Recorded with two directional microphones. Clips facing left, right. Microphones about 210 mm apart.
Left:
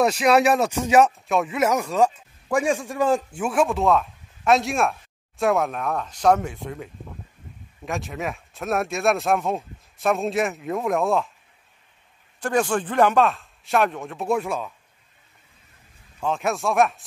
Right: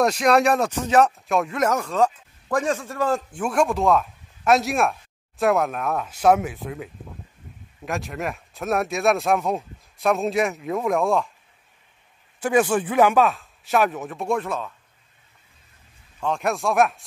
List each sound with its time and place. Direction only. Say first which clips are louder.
0.0 s speech: even; centre (ahead or behind)
12.4 s speech: right 3 dB; 10° right (ahead or behind); by 14.7 s 10° left (ahead or behind)
16.2 s speech: even; centre (ahead or behind)